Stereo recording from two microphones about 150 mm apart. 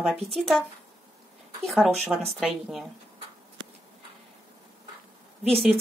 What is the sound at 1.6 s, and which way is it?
A woman's voice, centre (ahead or behind).